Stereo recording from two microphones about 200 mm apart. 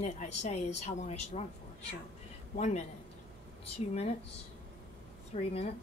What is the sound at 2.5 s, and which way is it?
Speech, 35° left (ahead or behind).